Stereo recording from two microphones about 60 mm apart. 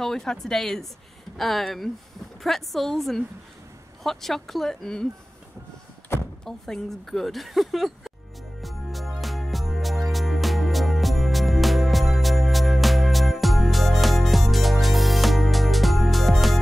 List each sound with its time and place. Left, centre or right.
0.0 s a woman's voice: centre
6.1 s door: left
6.4 s speech: centre
8.5 s music: centre